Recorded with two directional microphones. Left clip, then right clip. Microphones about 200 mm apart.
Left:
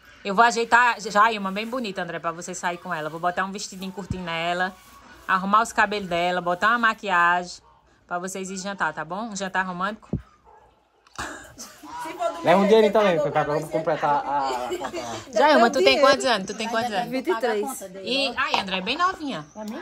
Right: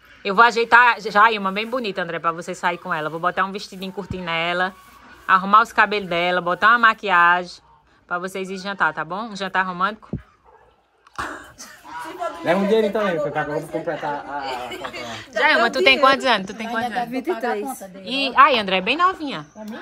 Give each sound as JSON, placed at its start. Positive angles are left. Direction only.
{"t": 0.2, "sound": "a woman's voice", "side_deg": 5}
{"t": 11.1, "sound": "cough", "side_deg": 5}
{"t": 12.1, "sound": "a woman's voice", "side_deg": 5}
{"t": 14.8, "sound": "speech", "side_deg": 20}
{"t": 15.8, "sound": "a woman's voice", "side_deg": 5}
{"t": 18.3, "sound": "a woman's voice", "side_deg": -15}